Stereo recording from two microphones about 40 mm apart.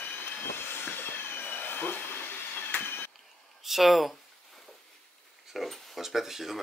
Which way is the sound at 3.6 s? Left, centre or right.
Centre.